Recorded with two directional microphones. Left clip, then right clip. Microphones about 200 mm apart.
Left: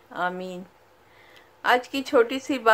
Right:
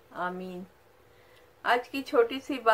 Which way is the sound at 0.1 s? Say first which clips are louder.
Left 6 dB; 45° left (ahead or behind).